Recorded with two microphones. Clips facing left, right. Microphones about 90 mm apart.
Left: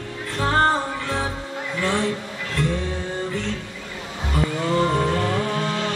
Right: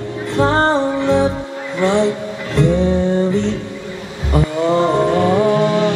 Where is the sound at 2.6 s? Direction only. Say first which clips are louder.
Right 11 dB; 20° right (ahead or behind).